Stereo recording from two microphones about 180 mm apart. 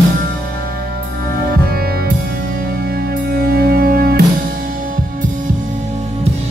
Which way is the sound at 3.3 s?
55° right (ahead or behind).